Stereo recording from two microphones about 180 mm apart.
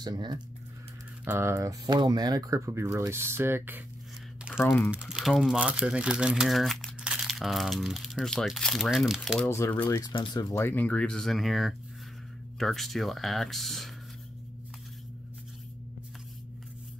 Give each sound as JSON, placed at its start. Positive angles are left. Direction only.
{"t": 0.0, "sound": "speech", "side_deg": -25}
{"t": 1.2, "sound": "speech", "side_deg": -15}
{"t": 4.6, "sound": "speech", "side_deg": 10}
{"t": 4.9, "sound": "speech", "side_deg": -5}
{"t": 9.5, "sound": "speech", "side_deg": 10}
{"t": 10.1, "sound": "speech", "side_deg": 25}
{"t": 10.5, "sound": "speech", "side_deg": 10}